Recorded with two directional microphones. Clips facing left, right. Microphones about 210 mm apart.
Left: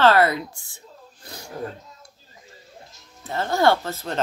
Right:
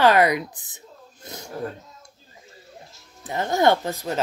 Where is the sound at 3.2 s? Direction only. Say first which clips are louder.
Even; 15° right (ahead or behind).